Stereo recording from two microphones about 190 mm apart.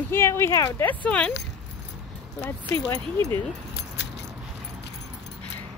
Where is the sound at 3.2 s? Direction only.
10° left (ahead or behind).